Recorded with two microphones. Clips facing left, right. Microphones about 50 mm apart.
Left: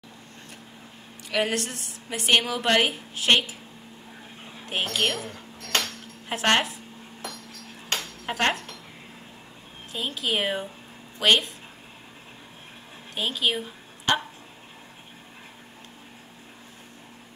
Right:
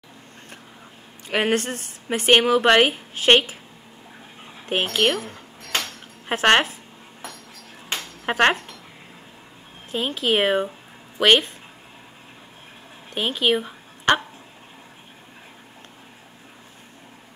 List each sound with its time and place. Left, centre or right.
1.3 s a woman's voice: right
4.6 s a woman's voice: right
5.6 s a sound: centre
6.2 s speech: right
8.3 s a woman's voice: right
9.9 s a woman's voice: right
13.1 s speech: right